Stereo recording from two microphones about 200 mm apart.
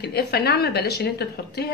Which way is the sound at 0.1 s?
55° left (ahead or behind).